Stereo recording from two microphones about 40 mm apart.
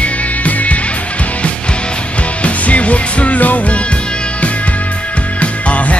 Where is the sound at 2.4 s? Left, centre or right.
Left.